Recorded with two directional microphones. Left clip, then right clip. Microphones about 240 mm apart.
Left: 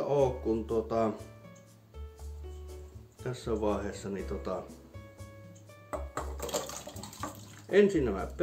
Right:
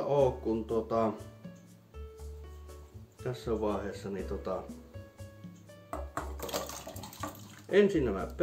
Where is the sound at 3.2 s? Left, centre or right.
Centre.